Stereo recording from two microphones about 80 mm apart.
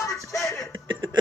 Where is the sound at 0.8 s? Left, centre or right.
Right.